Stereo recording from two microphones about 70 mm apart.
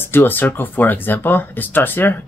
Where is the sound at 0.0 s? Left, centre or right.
Left.